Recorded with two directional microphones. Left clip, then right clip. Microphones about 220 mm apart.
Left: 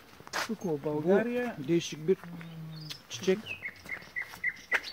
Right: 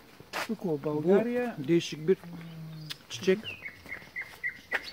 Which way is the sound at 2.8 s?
Centre (ahead or behind).